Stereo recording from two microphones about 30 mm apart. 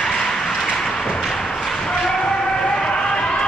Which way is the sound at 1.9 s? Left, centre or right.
Left.